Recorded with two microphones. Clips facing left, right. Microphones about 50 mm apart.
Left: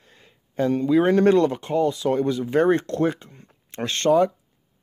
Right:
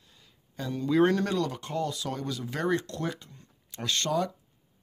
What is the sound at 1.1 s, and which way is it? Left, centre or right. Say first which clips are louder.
Speech: left 11 dB; left.